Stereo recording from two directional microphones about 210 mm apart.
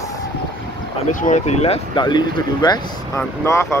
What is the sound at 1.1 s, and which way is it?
Speech, 35° left (ahead or behind).